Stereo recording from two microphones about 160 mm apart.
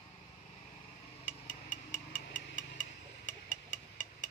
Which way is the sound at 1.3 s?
55° left (ahead or behind).